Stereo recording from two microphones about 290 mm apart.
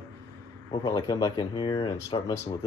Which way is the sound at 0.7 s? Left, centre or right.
Centre.